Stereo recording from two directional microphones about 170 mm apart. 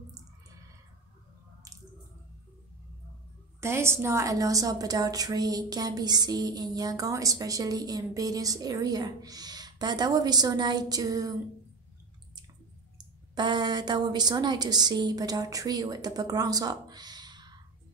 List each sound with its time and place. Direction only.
3.6 s a woman's voice: 15° right (ahead or behind)
12.9 s a woman's voice: 25° right (ahead or behind)